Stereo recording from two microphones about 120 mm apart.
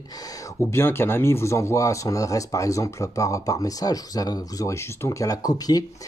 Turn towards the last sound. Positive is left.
turn(degrees=30)  # may be behind; listen again after turning